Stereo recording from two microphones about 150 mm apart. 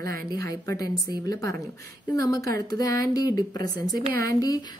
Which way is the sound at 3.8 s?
80° right.